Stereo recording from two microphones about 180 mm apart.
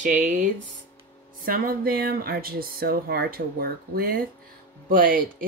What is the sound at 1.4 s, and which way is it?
Speech, 55° right (ahead or behind).